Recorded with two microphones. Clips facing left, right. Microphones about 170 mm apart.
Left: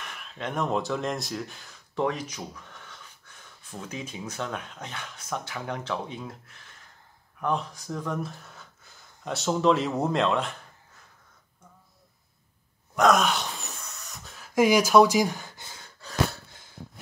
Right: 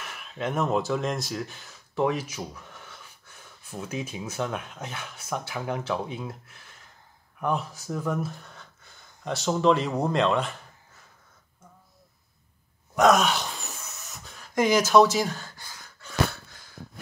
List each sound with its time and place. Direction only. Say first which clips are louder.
0.0 s speech: right 4 dB; 5° right (ahead or behind)
3.9 s speech: right 3 dB; 5° right (ahead or behind)
12.9 s a sound: right 1 dB; 5° right (ahead or behind); by 15.8 s 20° left (ahead or behind)